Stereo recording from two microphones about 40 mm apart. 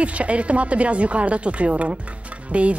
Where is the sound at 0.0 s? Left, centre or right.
Right.